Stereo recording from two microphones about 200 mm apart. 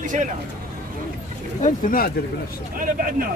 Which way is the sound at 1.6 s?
45° left (ahead or behind).